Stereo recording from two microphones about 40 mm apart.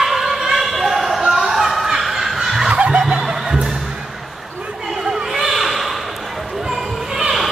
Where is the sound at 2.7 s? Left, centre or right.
Right.